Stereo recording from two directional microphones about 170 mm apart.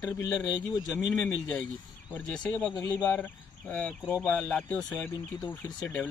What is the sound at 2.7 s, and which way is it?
Speech, 20° left (ahead or behind).